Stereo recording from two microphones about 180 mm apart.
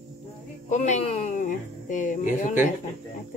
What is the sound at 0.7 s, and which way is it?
Speech, 40° left (ahead or behind).